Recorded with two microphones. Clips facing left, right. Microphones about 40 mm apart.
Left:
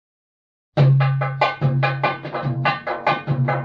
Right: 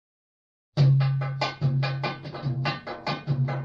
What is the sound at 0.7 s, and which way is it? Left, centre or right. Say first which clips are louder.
Music: left 6 dB; left.